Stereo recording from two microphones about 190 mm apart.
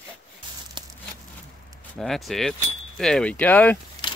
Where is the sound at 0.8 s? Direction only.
25° right (ahead or behind).